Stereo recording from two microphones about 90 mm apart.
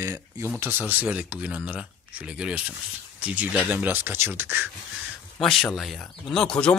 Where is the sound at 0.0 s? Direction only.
30° right (ahead or behind).